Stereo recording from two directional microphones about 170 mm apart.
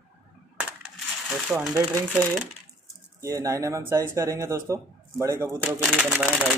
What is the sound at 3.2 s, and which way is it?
Speech, 15° right (ahead or behind).